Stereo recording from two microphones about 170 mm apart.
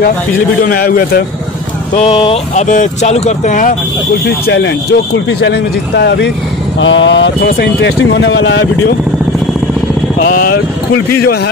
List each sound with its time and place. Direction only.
0.7 s a man's voice: 65° left (ahead or behind)
2.0 s speech: 30° left (ahead or behind)
2.5 s speech: 45° left (ahead or behind)
4.5 s speech: 90° left
10.2 s a man's voice: 60° left (ahead or behind)